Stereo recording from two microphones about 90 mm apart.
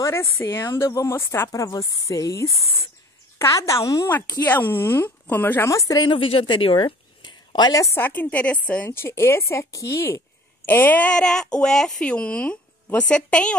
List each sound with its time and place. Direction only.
0.0 s speech: 30° left (ahead or behind)
1.5 s speech: 40° left (ahead or behind)
4.4 s speech: 20° left (ahead or behind)
5.7 s speech: 40° left (ahead or behind)
6.0 s a woman's voice: 85° left; by 7.8 s 50° left (ahead or behind)
7.9 s a woman's voice: 20° left (ahead or behind)